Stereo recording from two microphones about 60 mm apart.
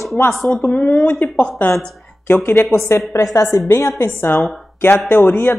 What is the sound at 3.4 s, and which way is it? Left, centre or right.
Speech, left.